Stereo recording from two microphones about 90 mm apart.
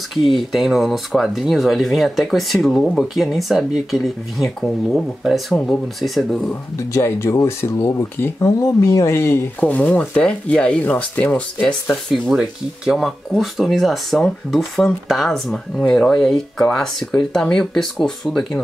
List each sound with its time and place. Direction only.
0.4 s speech: centre (ahead or behind)
6.9 s speech: 30° left (ahead or behind)
9.6 s speech: 15° left (ahead or behind)
12.1 s speech: 5° right (ahead or behind)